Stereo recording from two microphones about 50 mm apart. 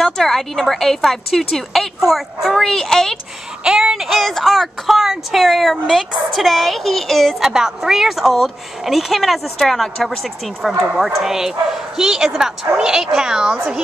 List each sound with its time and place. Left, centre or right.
0.0 s a woman's voice: centre
3.6 s speech: centre
4.2 s speech: centre
7.3 s speech: centre